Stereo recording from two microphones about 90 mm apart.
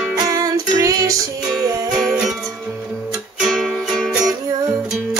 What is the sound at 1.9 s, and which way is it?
Music, 5° right (ahead or behind).